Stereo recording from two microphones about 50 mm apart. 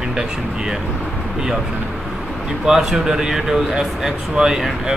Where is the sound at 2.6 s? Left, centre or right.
Centre.